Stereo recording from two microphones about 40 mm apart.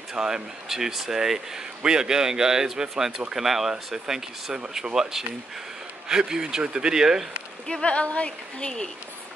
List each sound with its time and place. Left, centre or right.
0.1 s speech: centre
6.0 s speech: centre
7.8 s speech: left